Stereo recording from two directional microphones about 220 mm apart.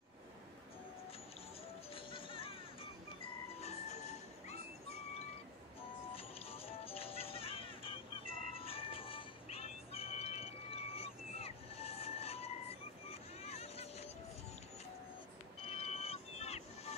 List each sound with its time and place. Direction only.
2.0 s music: 25° left (ahead or behind)
6.1 s music: 25° left (ahead or behind)
15.6 s vehicle: 25° left (ahead or behind)